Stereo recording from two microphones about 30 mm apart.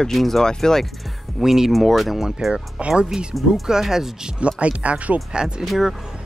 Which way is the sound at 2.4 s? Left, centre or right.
Centre.